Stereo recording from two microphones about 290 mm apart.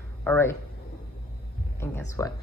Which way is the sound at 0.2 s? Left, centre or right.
Centre.